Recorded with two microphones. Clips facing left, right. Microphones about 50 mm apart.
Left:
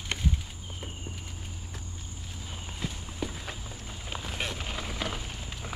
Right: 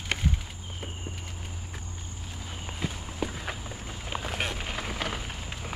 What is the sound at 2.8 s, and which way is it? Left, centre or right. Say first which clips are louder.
Walk: right 3 dB; right.